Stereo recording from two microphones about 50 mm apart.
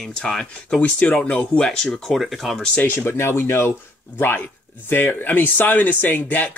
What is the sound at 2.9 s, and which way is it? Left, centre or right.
Speech, left.